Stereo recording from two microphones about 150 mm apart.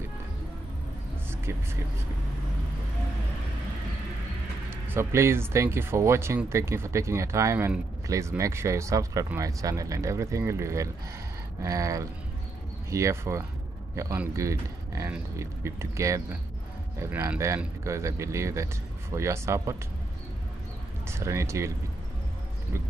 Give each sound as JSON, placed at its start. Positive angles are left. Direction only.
{"t": 4.6, "sound": "speech", "side_deg": -15}
{"t": 21.1, "sound": "speech", "side_deg": -20}